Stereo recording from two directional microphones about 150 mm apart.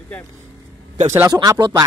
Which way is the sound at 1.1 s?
20° right (ahead or behind).